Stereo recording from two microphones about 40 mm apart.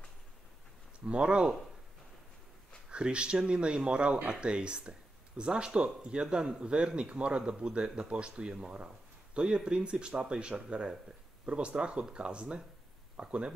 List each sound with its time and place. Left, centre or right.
1.0 s speech: right
2.9 s speech: right